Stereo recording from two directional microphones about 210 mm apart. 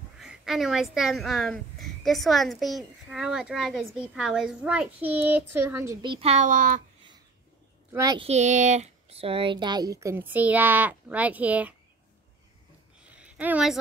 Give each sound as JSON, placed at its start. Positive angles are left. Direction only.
{"t": 0.2, "sound": "speech", "side_deg": 0}
{"t": 6.1, "sound": "a child's voice", "side_deg": -30}
{"t": 7.9, "sound": "speech", "side_deg": -15}
{"t": 8.3, "sound": "speech", "side_deg": -35}
{"t": 13.2, "sound": "a woman's voice", "side_deg": -5}